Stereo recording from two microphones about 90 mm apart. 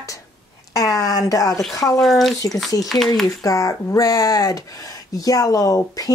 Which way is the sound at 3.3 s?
40° left (ahead or behind).